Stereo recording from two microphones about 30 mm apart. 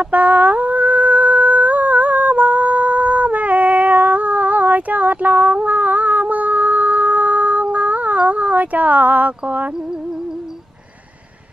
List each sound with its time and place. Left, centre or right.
0.0 s humming: right